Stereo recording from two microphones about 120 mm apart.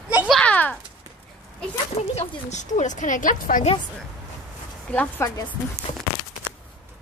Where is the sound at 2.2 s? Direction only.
75° left (ahead or behind); by 3.7 s 90° left.